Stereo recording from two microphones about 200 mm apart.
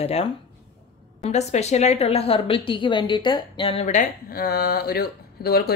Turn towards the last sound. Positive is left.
turn(degrees=50)  # may be behind; listen again after turning